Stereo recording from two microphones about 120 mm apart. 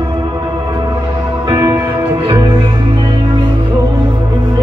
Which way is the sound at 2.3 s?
40° right (ahead or behind).